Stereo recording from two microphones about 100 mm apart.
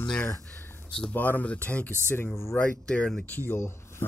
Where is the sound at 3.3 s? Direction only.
25° left (ahead or behind).